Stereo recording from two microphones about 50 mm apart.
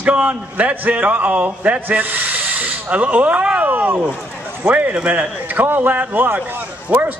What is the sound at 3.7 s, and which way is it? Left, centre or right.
Speech, right.